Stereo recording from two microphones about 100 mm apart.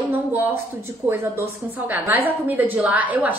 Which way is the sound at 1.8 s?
15° right (ahead or behind).